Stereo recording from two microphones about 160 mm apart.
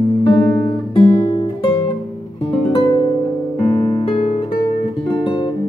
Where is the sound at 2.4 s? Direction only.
35° left (ahead or behind).